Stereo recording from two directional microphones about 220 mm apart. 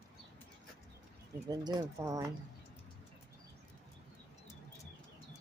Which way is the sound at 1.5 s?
20° right (ahead or behind).